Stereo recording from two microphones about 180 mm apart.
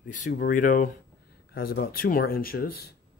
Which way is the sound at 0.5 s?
45° left (ahead or behind).